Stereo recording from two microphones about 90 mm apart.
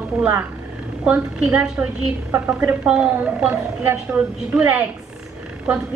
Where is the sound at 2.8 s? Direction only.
10° right (ahead or behind).